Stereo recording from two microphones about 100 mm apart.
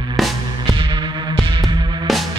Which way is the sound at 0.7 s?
55° right (ahead or behind).